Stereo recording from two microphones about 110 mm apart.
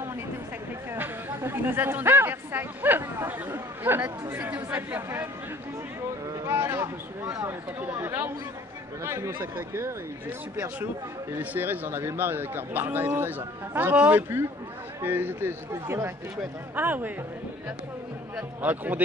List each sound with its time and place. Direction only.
0.9 s speech: 20° right (ahead or behind)
6.3 s speech: 20° right (ahead or behind)
11.3 s speech: 15° right (ahead or behind)
18.3 s speech: 15° right (ahead or behind)